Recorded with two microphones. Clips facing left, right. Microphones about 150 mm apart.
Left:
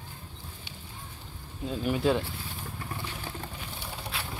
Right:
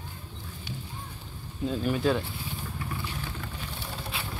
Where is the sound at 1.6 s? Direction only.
10° left (ahead or behind).